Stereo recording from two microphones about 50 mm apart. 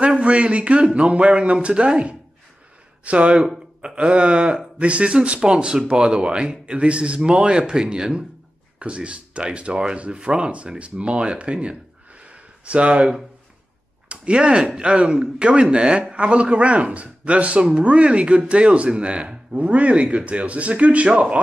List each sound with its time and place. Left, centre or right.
0.0 s speech: right
12.3 s a sound: right
14.0 s speech: right